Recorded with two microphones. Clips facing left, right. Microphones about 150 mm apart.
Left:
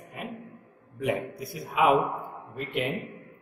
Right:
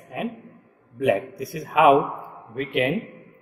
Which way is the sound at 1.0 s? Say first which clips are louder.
Right 7 dB; 85° right.